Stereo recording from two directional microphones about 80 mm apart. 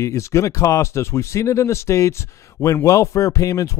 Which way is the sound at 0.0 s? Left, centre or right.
Left.